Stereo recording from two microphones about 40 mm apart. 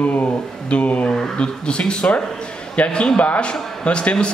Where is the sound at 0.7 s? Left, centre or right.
Left.